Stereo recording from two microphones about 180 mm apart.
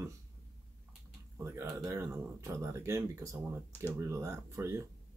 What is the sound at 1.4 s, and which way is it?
Speech, 15° right (ahead or behind).